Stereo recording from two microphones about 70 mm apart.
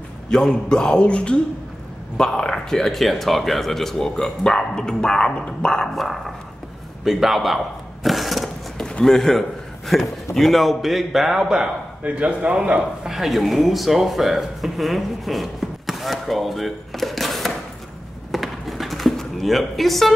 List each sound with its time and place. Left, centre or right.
0.3 s speech: centre
8.7 s a man's voice: centre
12.0 s a man's voice: right
13.1 s speech: centre
18.3 s a sound: centre